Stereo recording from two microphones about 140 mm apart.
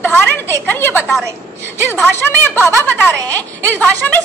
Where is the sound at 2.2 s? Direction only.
15° left (ahead or behind).